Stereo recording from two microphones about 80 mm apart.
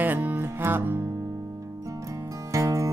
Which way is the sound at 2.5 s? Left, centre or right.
Right.